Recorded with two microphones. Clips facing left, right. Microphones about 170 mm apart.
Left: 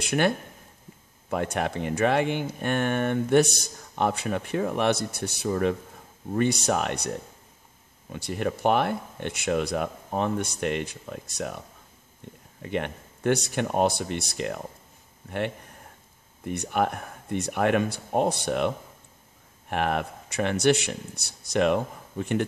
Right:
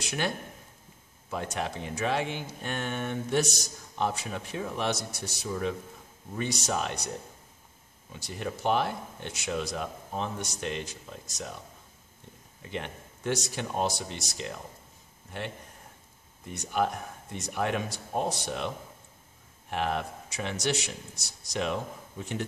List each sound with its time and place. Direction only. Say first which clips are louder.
0.0 s speech: left 8 dB; 60° left (ahead or behind)
1.3 s speech: left 6 dB; 60° left (ahead or behind)
8.1 s speech: left 7 dB; 60° left (ahead or behind)
12.6 s speech: left 7 dB; 60° left (ahead or behind)
16.4 s speech: left 3 dB; 60° left (ahead or behind)
19.7 s speech: left 4 dB; 60° left (ahead or behind)